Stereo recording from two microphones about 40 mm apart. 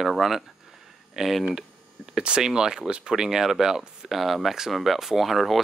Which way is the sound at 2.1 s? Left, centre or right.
Centre.